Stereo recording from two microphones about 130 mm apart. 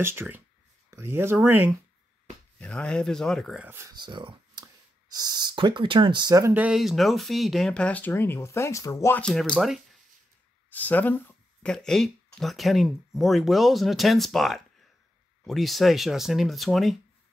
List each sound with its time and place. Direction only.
0.0 s speech: 20° right (ahead or behind)
2.6 s speech: 10° left (ahead or behind)
3.6 s speech: 20° right (ahead or behind)
3.9 s speech: 35° right (ahead or behind)
6.5 s speech: 10° right (ahead or behind); by 9.2 s 25° left (ahead or behind)
9.2 s speech: 5° left (ahead or behind)
10.7 s a sound: 15° left (ahead or behind)
11.7 s speech: 5° left (ahead or behind)